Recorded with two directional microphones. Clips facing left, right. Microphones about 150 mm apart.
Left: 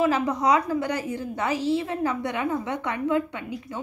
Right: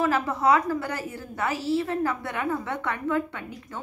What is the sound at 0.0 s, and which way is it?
A woman's voice, 15° left (ahead or behind).